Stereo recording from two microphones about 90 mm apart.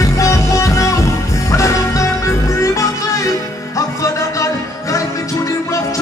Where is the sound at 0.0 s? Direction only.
35° left (ahead or behind).